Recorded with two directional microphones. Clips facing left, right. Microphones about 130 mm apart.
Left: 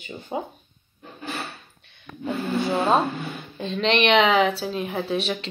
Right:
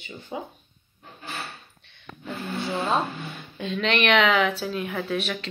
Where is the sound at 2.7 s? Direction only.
35° left (ahead or behind).